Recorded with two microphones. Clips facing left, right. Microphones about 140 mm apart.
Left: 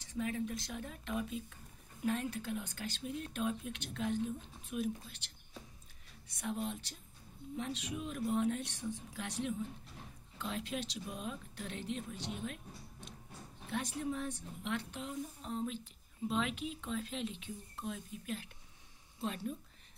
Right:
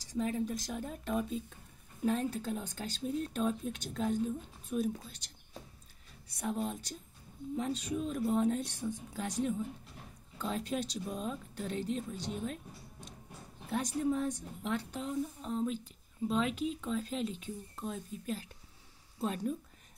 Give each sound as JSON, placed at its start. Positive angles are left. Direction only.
{"t": 0.0, "sound": "speech", "side_deg": -35}
{"t": 6.4, "sound": "speech", "side_deg": -40}
{"t": 13.7, "sound": "speech", "side_deg": -40}